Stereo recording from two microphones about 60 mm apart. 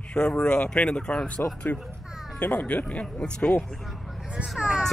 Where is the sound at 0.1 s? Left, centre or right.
Centre.